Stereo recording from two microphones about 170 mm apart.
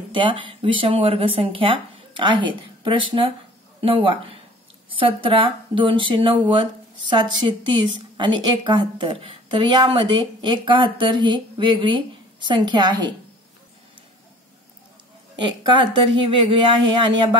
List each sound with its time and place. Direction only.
0.1 s speech: 30° right (ahead or behind)
15.3 s speech: 30° right (ahead or behind)